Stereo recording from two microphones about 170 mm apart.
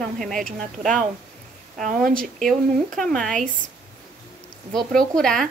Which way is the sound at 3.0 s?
Centre (ahead or behind).